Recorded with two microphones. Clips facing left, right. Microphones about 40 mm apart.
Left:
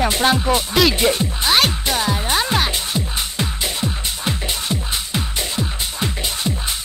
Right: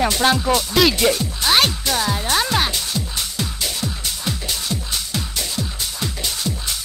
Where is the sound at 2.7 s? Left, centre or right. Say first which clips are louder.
Left 2 dB; left.